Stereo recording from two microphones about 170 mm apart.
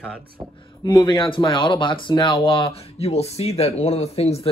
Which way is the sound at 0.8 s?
25° left (ahead or behind).